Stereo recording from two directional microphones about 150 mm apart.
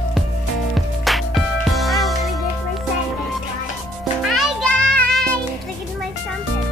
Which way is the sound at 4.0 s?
Centre (ahead or behind).